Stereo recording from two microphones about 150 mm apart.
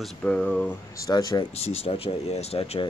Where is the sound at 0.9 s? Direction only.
25° left (ahead or behind).